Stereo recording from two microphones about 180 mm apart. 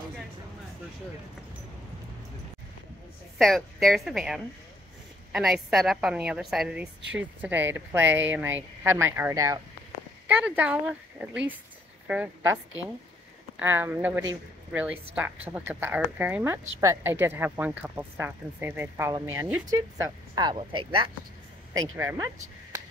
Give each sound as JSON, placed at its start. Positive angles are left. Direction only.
{"t": 3.3, "sound": "a woman's voice", "side_deg": 0}
{"t": 13.6, "sound": "a woman's voice", "side_deg": -10}
{"t": 21.7, "sound": "speech", "side_deg": -15}